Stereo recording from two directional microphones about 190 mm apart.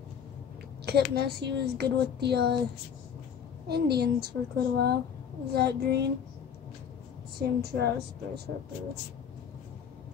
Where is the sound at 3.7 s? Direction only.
60° right (ahead or behind).